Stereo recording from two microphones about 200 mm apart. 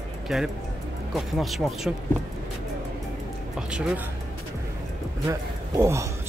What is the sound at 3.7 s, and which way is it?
Speech, 5° right (ahead or behind).